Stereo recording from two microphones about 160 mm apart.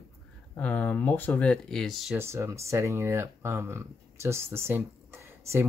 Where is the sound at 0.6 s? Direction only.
10° left (ahead or behind).